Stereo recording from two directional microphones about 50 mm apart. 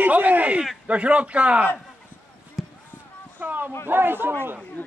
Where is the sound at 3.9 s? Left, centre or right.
Right.